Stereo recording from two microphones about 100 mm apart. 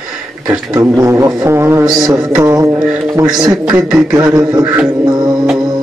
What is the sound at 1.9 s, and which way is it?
Speech, 40° right (ahead or behind).